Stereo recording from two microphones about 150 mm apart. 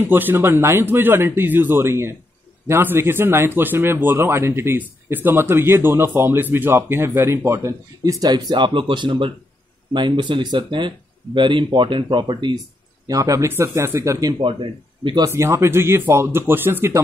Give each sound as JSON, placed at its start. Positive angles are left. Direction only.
{"t": 0.0, "sound": "speech", "side_deg": -15}